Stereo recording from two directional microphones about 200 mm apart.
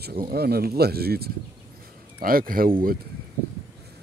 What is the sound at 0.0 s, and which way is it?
Speech, 50° right (ahead or behind).